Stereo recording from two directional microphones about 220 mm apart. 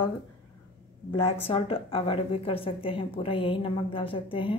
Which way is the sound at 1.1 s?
25° left (ahead or behind).